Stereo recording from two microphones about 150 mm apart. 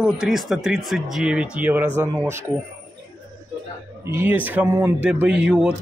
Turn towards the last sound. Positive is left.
turn(degrees=-5)  # may be behind; listen again after turning